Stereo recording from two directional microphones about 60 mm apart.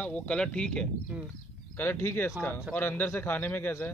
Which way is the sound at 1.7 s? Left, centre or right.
Left.